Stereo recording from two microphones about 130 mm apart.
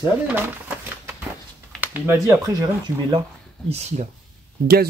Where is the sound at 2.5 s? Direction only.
35° right (ahead or behind).